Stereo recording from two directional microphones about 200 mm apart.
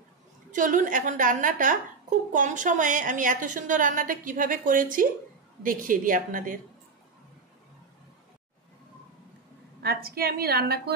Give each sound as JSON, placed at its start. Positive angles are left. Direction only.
{"t": 0.5, "sound": "a woman's voice", "side_deg": -40}
{"t": 9.8, "sound": "a woman's voice", "side_deg": -50}